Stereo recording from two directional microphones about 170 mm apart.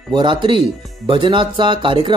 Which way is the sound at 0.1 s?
30° right (ahead or behind).